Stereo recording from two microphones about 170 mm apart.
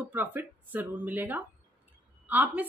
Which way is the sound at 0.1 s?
10° right (ahead or behind).